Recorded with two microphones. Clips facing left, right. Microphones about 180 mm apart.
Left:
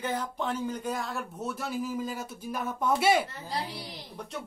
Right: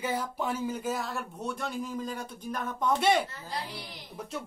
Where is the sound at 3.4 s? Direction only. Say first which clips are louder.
Left 3 dB; 35° left (ahead or behind).